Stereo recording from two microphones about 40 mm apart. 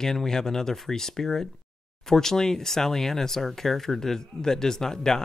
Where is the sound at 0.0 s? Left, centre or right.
Centre.